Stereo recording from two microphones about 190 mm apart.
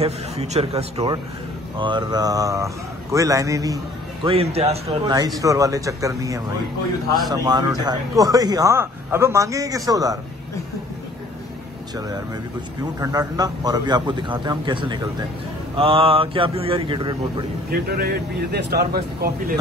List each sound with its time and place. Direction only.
0.0 s a man's voice: 35° right (ahead or behind)
5.4 s speech: 15° right (ahead or behind)
13.0 s speech: 20° right (ahead or behind)
17.6 s speech: 55° right (ahead or behind)